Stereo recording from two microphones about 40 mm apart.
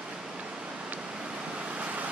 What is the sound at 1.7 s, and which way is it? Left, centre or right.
Vehicle, right.